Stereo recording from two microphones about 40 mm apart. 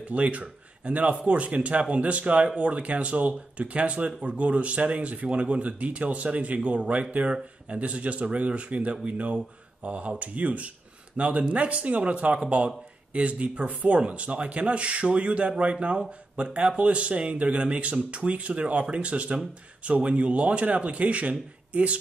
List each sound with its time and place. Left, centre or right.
0.0 s speech: right